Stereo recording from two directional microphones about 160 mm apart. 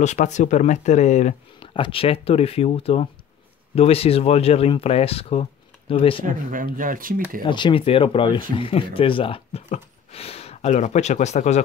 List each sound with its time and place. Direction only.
0.0 s speech: 45° left (ahead or behind)
6.2 s speech: 55° right (ahead or behind)
7.4 s speech: 30° left (ahead or behind); by 11.6 s 45° left (ahead or behind)